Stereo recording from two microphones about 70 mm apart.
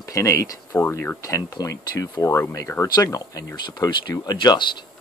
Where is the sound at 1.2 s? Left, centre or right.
Left.